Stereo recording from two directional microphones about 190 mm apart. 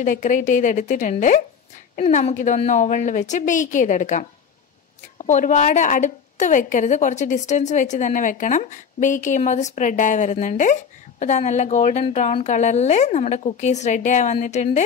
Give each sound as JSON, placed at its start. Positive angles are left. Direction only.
{"t": 0.0, "sound": "a woman's voice", "side_deg": 40}